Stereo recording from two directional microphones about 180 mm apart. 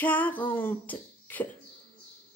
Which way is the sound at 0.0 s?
10° left (ahead or behind).